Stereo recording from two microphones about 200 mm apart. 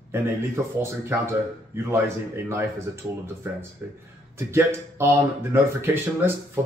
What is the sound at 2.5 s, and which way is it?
Speech, 15° right (ahead or behind).